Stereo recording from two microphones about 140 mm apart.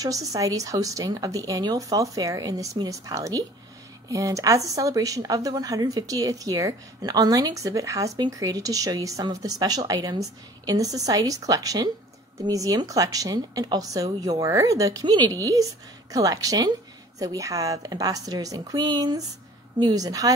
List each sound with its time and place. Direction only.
0.0 s speech: 25° right (ahead or behind)